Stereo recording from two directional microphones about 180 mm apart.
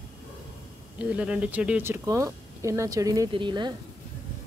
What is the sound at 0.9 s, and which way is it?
Speech, 5° right (ahead or behind).